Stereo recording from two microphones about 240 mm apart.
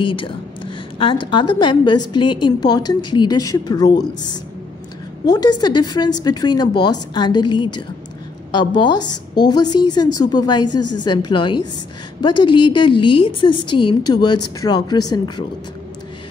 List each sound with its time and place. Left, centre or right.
0.0 s a woman's voice: left
5.2 s a woman's voice: centre